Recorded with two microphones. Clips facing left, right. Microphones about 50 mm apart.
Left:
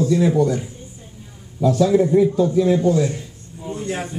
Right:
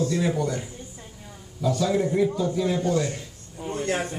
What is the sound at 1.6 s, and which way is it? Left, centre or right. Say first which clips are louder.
A man's voice: left 7 dB; centre.